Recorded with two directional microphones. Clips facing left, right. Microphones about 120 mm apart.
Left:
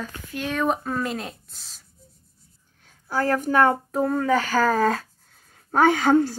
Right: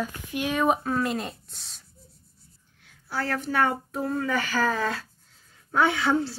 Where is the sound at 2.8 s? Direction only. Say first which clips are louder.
Left 6 dB; 45° left (ahead or behind).